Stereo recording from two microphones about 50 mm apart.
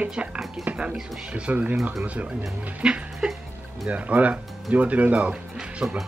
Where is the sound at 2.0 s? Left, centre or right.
Right.